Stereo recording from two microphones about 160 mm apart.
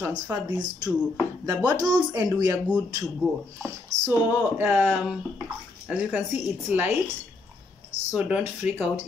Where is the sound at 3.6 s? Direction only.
15° right (ahead or behind).